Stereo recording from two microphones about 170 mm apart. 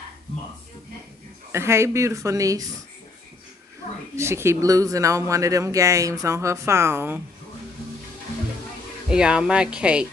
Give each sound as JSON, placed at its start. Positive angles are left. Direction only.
{"t": 1.5, "sound": "speech", "side_deg": -15}
{"t": 4.1, "sound": "speech", "side_deg": -15}
{"t": 9.1, "sound": "speech", "side_deg": -5}